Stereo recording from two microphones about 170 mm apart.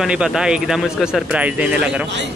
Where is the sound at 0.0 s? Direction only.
5° right (ahead or behind).